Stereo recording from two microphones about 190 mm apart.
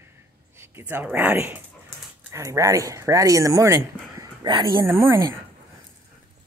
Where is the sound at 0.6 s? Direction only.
10° right (ahead or behind).